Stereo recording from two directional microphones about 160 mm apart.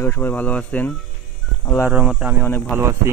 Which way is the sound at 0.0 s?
10° left (ahead or behind).